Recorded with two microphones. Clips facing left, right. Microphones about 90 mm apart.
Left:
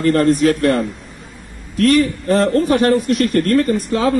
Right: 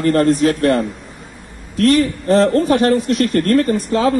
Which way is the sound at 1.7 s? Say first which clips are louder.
Even; 30° right (ahead or behind).